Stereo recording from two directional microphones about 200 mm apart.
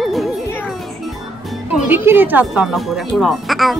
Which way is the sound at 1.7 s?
10° right (ahead or behind).